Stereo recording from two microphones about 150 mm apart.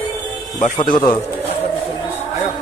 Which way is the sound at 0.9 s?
30° left (ahead or behind).